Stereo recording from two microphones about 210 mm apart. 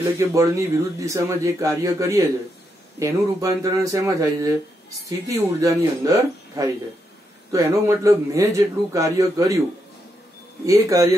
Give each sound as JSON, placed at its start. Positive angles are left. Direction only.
{"t": 0.2, "sound": "speech", "side_deg": -15}
{"t": 10.6, "sound": "speech", "side_deg": -15}